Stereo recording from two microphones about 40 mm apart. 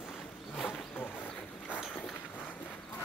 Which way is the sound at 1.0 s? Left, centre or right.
Left.